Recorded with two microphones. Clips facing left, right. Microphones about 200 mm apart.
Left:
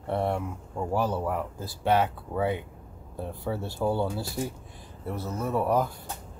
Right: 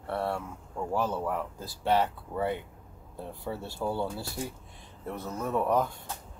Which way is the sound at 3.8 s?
20° left (ahead or behind).